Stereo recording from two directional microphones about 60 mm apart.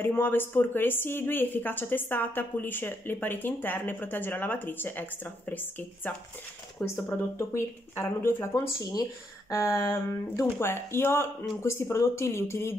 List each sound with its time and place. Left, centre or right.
0.0 s a woman's voice: left
7.1 s speech: left
9.5 s a sound: left
10.4 s speech: left